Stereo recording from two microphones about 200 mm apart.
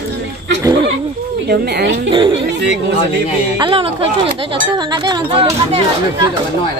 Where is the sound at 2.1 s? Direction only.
25° right (ahead or behind).